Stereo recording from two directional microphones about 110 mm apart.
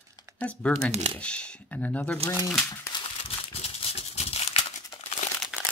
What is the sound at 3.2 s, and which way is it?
Crumpling, 65° left (ahead or behind).